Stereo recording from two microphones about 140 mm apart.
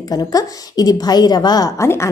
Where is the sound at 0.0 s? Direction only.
25° left (ahead or behind).